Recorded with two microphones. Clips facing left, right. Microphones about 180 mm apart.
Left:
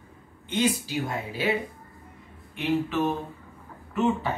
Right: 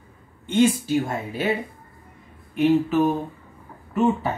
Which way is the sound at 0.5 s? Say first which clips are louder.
Right 7 dB; 45° right (ahead or behind).